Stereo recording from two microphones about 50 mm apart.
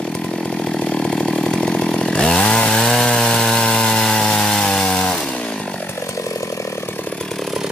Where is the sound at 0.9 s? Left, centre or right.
Centre.